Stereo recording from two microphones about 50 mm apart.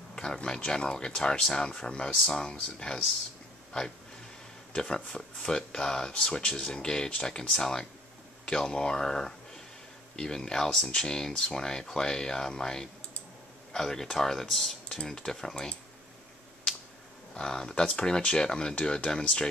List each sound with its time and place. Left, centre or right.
0.1 s speech: centre
4.7 s speech: centre
17.3 s speech: centre